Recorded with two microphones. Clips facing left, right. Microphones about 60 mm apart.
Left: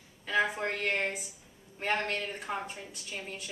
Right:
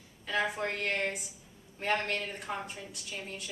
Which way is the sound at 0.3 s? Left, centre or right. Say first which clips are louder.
Left 2 dB; centre.